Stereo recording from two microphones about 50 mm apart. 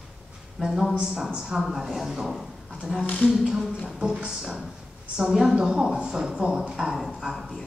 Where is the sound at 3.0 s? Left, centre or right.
Left.